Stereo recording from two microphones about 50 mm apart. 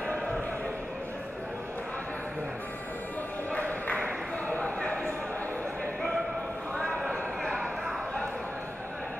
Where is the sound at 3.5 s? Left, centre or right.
Left.